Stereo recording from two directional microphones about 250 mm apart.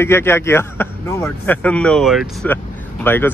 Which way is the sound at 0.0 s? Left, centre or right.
Centre.